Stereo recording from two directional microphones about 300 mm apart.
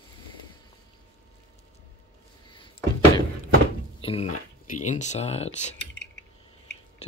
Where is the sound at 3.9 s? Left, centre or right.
Centre.